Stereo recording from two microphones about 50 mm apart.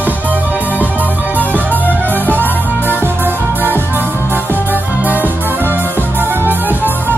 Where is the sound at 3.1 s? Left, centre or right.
Right.